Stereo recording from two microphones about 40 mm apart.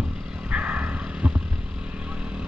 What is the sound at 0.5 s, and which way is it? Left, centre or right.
Vehicle, right.